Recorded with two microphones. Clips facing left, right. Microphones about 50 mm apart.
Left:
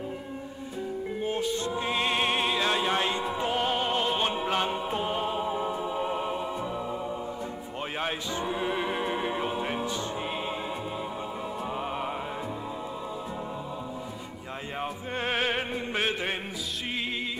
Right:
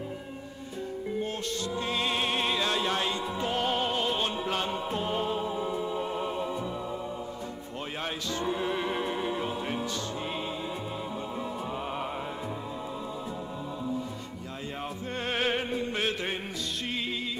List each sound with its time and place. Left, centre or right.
1.3 s music: centre
8.0 s music: centre
11.7 s music: centre
14.8 s music: centre